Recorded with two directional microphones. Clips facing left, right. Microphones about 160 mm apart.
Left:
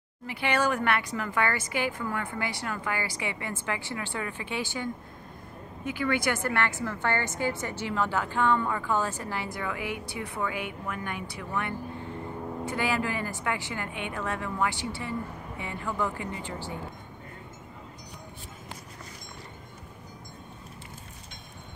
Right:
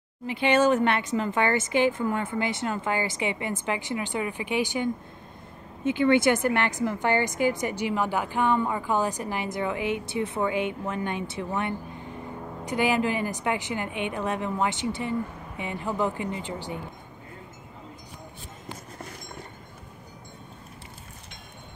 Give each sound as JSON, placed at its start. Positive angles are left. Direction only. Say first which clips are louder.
{"t": 0.3, "sound": "a woman's voice", "louder": "right 6 dB", "side_deg": -20}